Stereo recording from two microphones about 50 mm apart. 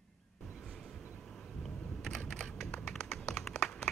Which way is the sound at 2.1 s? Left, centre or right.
Centre.